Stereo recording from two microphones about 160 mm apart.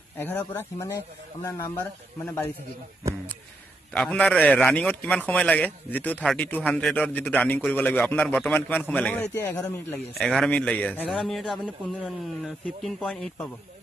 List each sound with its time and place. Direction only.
0.2 s a man's voice: 10° left (ahead or behind)
3.9 s a man's voice: 5° left (ahead or behind)